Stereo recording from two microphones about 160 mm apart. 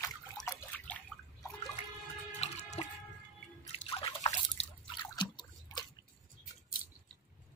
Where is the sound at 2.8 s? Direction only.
40° left (ahead or behind).